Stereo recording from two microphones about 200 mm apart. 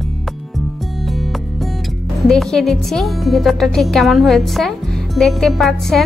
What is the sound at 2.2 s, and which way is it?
Speech, centre (ahead or behind).